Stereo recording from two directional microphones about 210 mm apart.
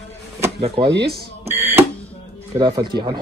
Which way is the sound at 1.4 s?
10° right (ahead or behind).